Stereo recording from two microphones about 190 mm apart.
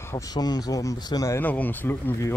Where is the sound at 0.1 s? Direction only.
20° left (ahead or behind).